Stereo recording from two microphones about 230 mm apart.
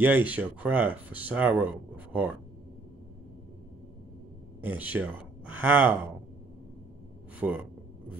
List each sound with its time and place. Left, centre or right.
0.0 s speech: centre
4.6 s speech: centre
7.3 s speech: centre